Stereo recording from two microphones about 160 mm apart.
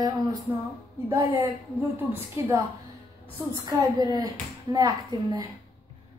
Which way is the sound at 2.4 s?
15° right (ahead or behind).